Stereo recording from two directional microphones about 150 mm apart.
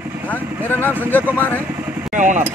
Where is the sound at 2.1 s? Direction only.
55° right (ahead or behind).